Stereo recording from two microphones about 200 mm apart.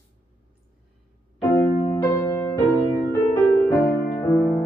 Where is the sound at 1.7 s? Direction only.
25° left (ahead or behind).